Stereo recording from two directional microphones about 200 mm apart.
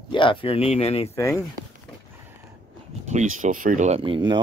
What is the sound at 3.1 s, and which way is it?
Speech, 35° right (ahead or behind).